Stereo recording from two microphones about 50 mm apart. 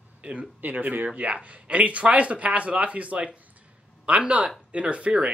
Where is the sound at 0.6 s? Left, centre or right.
Right.